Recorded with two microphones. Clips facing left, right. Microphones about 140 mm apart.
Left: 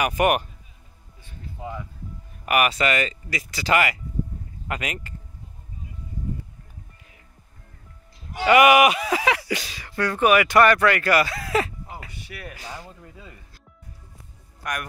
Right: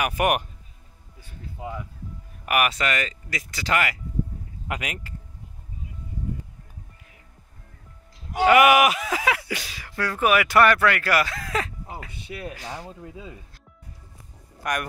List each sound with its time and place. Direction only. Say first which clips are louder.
0.0 s speech: left 2 dB; 5° right (ahead or behind)
8.5 s speech: left 1 dB; centre (ahead or behind)
12.3 s speech: right 4 dB; 25° right (ahead or behind)
14.6 s speech: right 3 dB; centre (ahead or behind)